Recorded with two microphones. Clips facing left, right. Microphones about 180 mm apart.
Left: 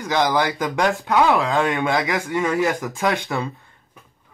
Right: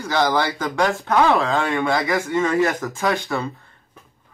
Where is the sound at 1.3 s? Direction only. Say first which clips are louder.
Even; 15° left (ahead or behind).